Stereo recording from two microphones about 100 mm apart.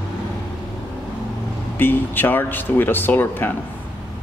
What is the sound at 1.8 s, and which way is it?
Speech, 20° left (ahead or behind).